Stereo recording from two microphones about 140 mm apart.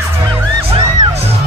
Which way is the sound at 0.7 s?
40° right (ahead or behind).